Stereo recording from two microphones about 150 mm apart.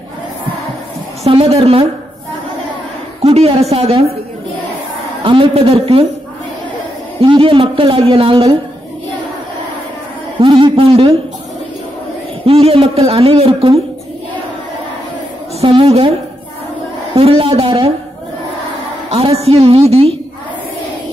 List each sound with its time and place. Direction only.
1.2 s a man's voice: 40° right (ahead or behind)
3.2 s a woman's voice: 40° right (ahead or behind)
5.2 s a man's voice: 35° right (ahead or behind)
7.2 s a man's voice: 35° right (ahead or behind)
10.4 s a man's voice: 35° right (ahead or behind)
12.4 s a man's voice: 40° right (ahead or behind)
15.6 s a man's voice: 40° right (ahead or behind)
17.1 s a man's voice: 40° right (ahead or behind)
19.0 s a man's voice: 40° right (ahead or behind)